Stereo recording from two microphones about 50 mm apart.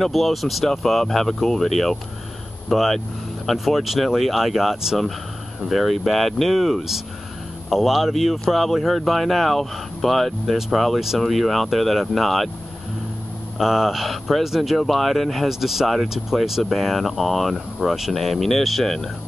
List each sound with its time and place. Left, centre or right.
0.0 s speech: centre
13.6 s speech: centre